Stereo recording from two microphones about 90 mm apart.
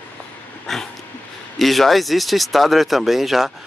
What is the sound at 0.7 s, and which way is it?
Dog, 5° left (ahead or behind).